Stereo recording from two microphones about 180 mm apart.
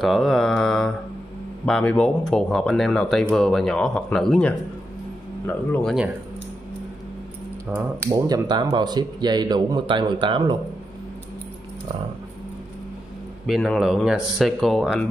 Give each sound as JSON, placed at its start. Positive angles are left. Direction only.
{"t": 0.0, "sound": "mantra", "side_deg": 0}
{"t": 1.7, "sound": "speech", "side_deg": 5}
{"t": 8.1, "sound": "speech", "side_deg": -20}
{"t": 13.5, "sound": "speech", "side_deg": 0}